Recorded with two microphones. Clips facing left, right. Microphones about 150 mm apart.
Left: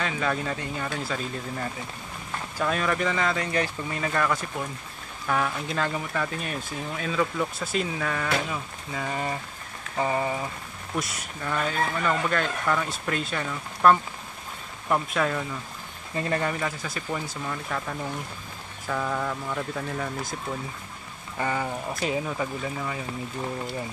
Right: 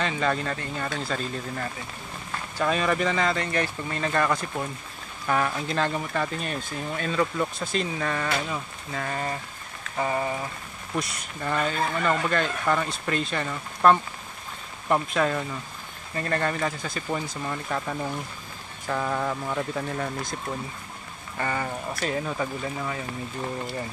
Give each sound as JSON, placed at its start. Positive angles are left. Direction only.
{"t": 0.0, "sound": "speech", "side_deg": 5}
{"t": 9.9, "sound": "a sound", "side_deg": 20}
{"t": 11.0, "sound": "speech", "side_deg": 0}
{"t": 16.2, "sound": "speech", "side_deg": 10}
{"t": 17.5, "sound": "speech", "side_deg": -5}
{"t": 21.4, "sound": "speech", "side_deg": 5}